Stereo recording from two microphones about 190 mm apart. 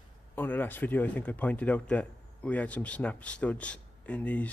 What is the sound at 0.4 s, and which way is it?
Speech, 10° left (ahead or behind).